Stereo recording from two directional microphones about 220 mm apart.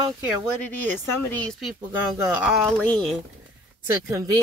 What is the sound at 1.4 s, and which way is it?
Speech, centre (ahead or behind).